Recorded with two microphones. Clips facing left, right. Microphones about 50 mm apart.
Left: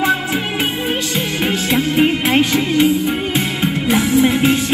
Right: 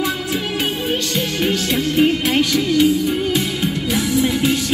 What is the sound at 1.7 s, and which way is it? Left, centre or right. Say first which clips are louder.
Music: left 2 dB; left.